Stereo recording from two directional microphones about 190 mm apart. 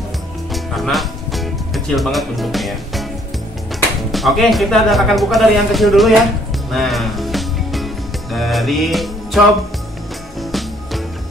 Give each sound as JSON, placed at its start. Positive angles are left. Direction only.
{"t": 0.5, "sound": "music", "side_deg": 0}
{"t": 4.1, "sound": "speech", "side_deg": 0}
{"t": 6.7, "sound": "music", "side_deg": 0}
{"t": 10.4, "sound": "music", "side_deg": 0}